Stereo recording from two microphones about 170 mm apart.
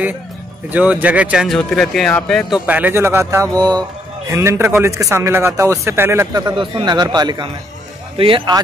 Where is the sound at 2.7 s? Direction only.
10° right (ahead or behind); by 8.6 s 25° right (ahead or behind).